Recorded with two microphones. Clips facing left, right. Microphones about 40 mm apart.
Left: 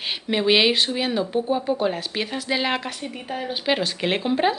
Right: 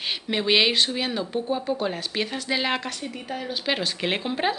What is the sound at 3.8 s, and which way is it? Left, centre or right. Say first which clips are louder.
Speech: left 3 dB; centre.